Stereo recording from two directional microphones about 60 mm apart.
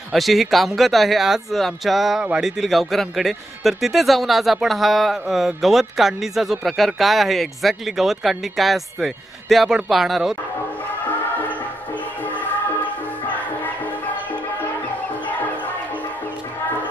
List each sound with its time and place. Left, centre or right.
0.1 s speech: centre